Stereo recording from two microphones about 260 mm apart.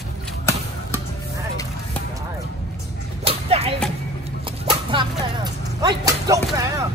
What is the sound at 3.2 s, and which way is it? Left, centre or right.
Whip, right.